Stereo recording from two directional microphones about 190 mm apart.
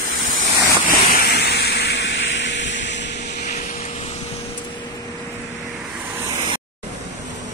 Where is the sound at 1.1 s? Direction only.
60° left (ahead or behind).